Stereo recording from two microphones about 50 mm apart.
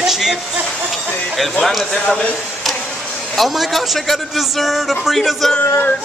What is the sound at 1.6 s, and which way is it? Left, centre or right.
Speech, centre.